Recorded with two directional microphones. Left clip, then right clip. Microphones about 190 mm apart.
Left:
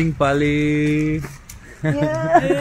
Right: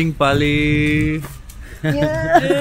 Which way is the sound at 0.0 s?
5° right (ahead or behind).